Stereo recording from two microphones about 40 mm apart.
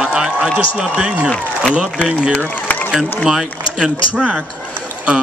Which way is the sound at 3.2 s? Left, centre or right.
Centre.